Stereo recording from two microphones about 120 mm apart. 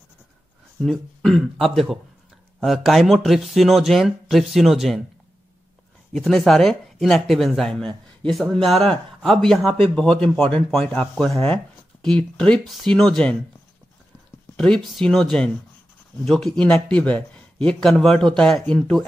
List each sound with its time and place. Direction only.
0.8 s speech: centre (ahead or behind)
6.1 s speech: centre (ahead or behind)
14.6 s speech: 5° left (ahead or behind)